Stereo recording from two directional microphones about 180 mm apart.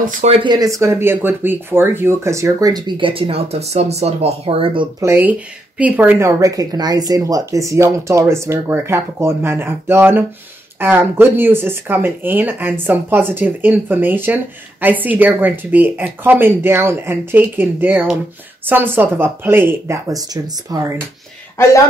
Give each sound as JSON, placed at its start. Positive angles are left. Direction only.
{"t": 0.0, "sound": "speech", "side_deg": -35}
{"t": 5.0, "sound": "speech", "side_deg": -15}